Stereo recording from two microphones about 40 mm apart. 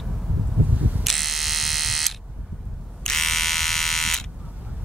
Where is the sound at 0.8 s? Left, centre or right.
Right.